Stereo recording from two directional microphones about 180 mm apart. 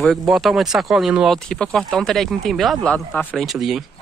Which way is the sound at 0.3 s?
Centre (ahead or behind).